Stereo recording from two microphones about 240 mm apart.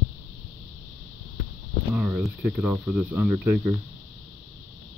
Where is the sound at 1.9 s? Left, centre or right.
Centre.